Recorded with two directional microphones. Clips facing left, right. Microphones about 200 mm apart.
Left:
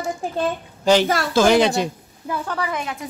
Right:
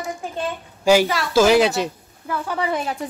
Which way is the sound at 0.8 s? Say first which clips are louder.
Even; 10° right (ahead or behind).